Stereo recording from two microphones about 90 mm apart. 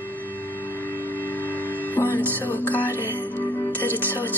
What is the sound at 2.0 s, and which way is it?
Music, 20° left (ahead or behind).